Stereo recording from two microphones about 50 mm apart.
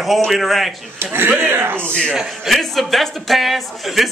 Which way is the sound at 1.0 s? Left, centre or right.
Right.